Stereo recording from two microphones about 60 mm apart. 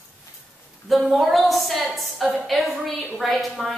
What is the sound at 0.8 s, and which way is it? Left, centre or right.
A woman's voice, centre.